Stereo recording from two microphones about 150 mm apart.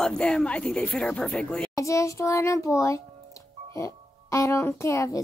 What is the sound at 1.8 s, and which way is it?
A child's voice, 20° left (ahead or behind).